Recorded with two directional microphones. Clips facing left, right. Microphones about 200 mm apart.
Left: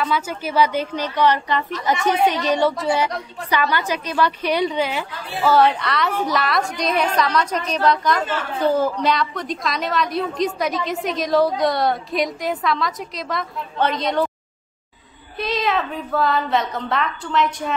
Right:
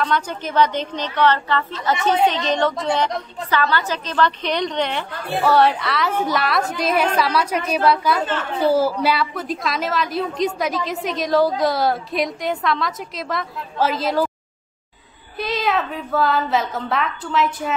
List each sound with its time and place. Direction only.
0.0 s a woman's voice: 5° left (ahead or behind)
5.1 s a woman's voice: 55° right (ahead or behind)
5.4 s a woman's voice: centre (ahead or behind)
15.3 s a woman's voice: centre (ahead or behind)